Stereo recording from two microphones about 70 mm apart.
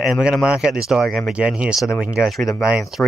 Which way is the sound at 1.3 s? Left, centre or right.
Centre.